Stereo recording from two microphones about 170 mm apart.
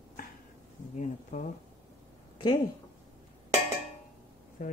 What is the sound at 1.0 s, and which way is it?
Speech, 45° left (ahead or behind).